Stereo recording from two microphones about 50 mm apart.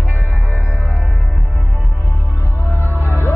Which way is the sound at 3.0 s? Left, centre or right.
Left.